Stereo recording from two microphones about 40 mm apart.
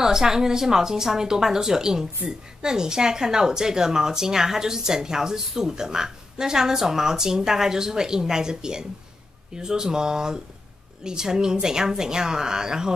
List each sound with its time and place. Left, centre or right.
0.0 s a woman's voice: centre